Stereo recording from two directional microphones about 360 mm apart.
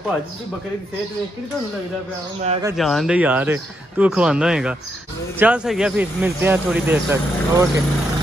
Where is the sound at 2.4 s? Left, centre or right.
Centre.